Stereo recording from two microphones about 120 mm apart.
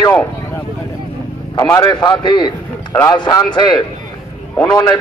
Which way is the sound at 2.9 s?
25° left (ahead or behind).